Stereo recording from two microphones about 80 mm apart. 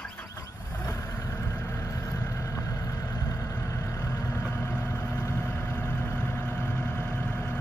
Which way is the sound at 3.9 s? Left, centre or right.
Left.